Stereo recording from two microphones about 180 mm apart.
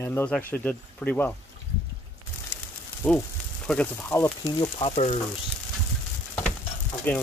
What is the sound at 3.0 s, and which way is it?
Speech, 5° left (ahead or behind).